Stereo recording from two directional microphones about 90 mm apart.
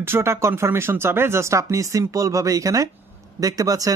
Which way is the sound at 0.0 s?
30° right (ahead or behind).